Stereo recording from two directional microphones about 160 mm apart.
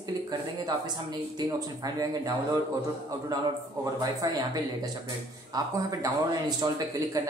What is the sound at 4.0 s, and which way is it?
Speech, 20° right (ahead or behind).